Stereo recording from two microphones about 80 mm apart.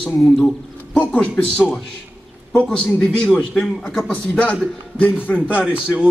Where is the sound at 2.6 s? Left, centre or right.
Centre.